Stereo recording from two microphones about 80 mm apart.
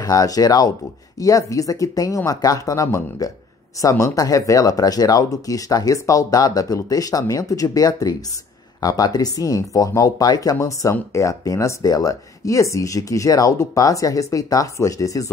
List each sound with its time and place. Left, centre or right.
0.0 s speech: left